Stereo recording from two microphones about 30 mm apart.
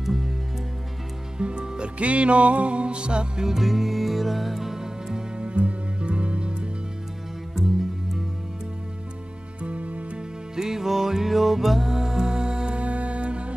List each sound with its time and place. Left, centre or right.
0.0 s music: centre
1.4 s music: right
3.4 s music: centre
5.4 s music: right
9.6 s music: right
10.1 s music: right
12.7 s music: right